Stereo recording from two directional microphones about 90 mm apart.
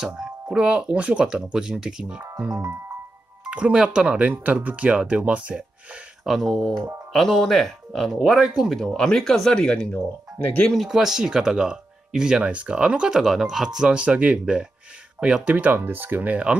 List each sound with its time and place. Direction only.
0.0 s speech: 10° right (ahead or behind)
2.6 s music: 35° right (ahead or behind)
3.4 s speech: 10° right (ahead or behind)
6.2 s speech: centre (ahead or behind)
10.7 s speech: 5° right (ahead or behind)